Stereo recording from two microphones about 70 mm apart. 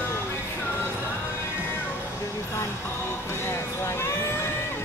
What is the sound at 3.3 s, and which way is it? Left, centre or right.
Vehicle, left.